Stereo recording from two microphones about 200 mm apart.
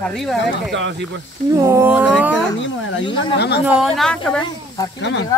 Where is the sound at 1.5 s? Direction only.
15° right (ahead or behind).